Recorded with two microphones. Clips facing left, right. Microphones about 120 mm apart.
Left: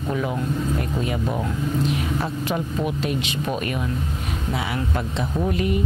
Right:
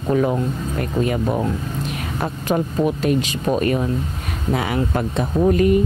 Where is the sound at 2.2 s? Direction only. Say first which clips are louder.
Right 4 dB; 45° right (ahead or behind).